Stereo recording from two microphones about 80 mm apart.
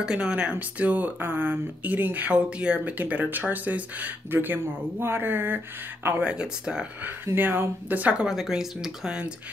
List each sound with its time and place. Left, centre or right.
0.0 s speech: centre
7.3 s speech: right; by 9.3 s centre